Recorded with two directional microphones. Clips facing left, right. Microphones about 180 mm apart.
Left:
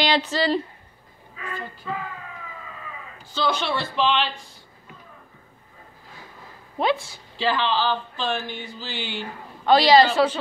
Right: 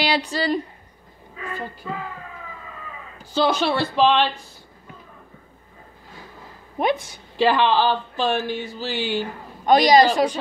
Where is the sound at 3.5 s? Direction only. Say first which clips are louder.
Right 5 dB; 40° right (ahead or behind).